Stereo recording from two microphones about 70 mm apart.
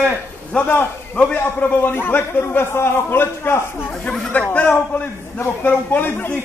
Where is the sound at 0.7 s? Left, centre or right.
Left.